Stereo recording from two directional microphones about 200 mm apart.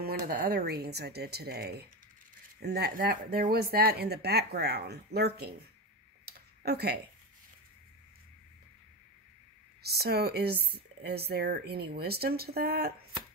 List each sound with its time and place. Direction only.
0.0 s speech: 50° right (ahead or behind)
6.6 s speech: 55° right (ahead or behind)
9.8 s speech: 50° right (ahead or behind)